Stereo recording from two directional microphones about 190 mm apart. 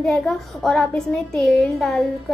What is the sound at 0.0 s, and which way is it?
A woman's voice, 5° left (ahead or behind).